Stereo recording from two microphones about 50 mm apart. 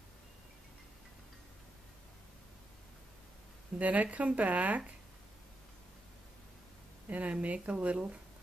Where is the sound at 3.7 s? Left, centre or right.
Right.